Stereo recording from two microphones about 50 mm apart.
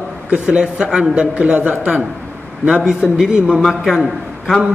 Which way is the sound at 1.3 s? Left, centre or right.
Right.